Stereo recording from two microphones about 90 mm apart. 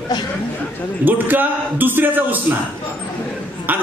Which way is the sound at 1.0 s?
20° right (ahead or behind).